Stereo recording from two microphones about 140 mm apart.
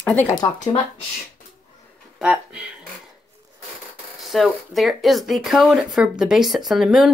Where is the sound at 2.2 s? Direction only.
5° right (ahead or behind).